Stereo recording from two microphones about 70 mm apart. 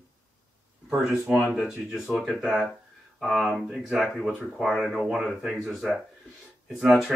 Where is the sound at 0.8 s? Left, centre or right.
Centre.